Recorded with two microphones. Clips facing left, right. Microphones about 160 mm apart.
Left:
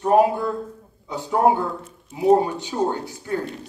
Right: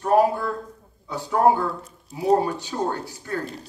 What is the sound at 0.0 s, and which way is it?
A man's voice, 20° left (ahead or behind).